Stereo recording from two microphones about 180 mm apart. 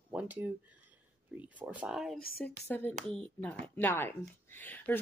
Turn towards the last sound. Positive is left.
turn(degrees=10)  # may be behind; listen again after turning